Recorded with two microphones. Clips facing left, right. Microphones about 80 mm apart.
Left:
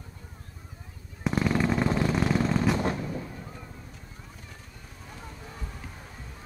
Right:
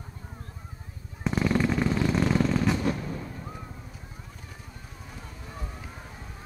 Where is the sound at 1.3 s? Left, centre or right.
Centre.